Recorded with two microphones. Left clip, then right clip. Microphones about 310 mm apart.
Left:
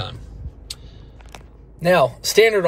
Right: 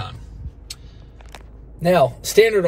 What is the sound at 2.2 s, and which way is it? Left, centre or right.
Speech, centre.